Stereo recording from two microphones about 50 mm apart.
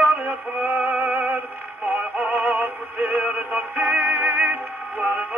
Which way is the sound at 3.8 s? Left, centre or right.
Right.